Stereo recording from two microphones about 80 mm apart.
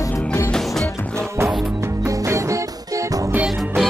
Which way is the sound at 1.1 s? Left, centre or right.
Right.